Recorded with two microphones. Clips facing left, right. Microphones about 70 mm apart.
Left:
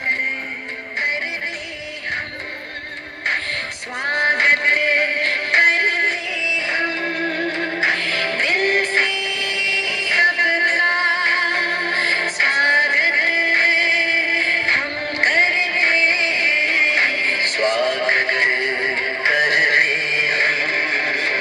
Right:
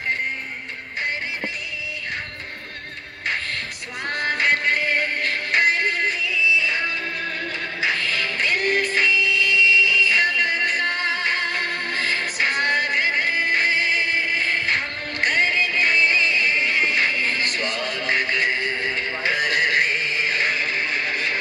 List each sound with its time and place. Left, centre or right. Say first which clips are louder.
4.0 s music: left 5 dB; left